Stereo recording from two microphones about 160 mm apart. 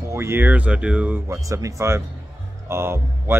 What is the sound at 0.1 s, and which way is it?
Speech, 15° right (ahead or behind).